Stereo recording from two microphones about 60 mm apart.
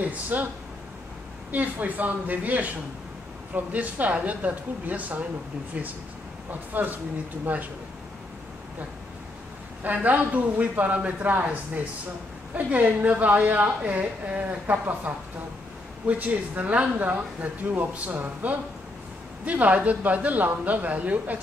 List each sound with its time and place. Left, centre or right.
0.0 s speech: right
1.5 s a woman's voice: right
6.7 s a woman's voice: right
9.8 s a woman's voice: right